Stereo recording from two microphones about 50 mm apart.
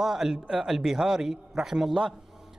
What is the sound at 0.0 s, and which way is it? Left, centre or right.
A man's voice, centre.